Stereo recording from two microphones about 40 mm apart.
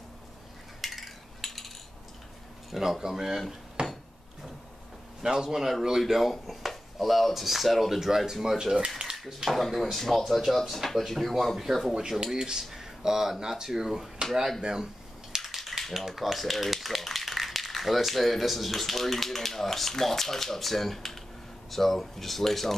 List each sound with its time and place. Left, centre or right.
0.7 s a sound: centre
2.7 s speech: centre
3.8 s dishes: right
5.2 s speech: centre
6.4 s a sound: centre
6.7 s speech: centre
8.7 s speech: right
9.1 s speech: centre
15.4 s a sound: centre
16.1 s speech: centre